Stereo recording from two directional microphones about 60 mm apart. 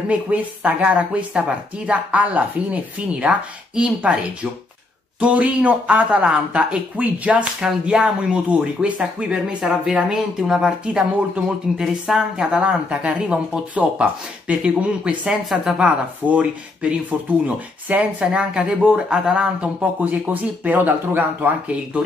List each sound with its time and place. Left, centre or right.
0.1 s speech: right
5.2 s speech: right